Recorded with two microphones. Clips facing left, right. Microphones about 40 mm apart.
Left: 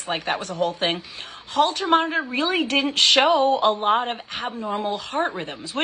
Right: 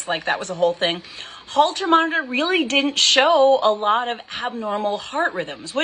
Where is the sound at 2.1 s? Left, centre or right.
Right.